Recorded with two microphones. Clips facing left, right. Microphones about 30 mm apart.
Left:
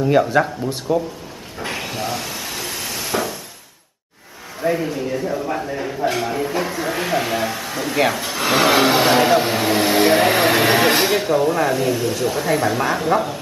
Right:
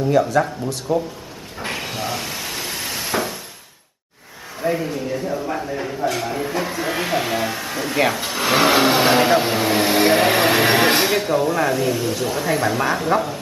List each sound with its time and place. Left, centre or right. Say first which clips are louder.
0.3 s speech: left 1 dB; left
0.9 s speech: left 1 dB; centre
1.6 s a sound: left 1 dB; centre
4.6 s speech: left 2 dB; centre